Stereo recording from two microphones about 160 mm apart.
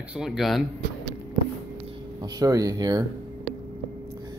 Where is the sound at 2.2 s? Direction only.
25° right (ahead or behind).